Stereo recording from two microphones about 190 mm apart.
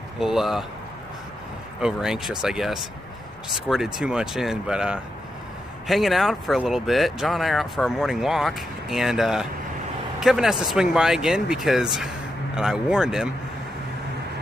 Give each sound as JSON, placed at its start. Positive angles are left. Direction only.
{"t": 0.2, "sound": "speech", "side_deg": 0}
{"t": 1.8, "sound": "speech", "side_deg": -5}